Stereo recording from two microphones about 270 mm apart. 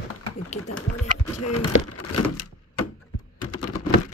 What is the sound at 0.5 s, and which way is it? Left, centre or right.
Speech, left.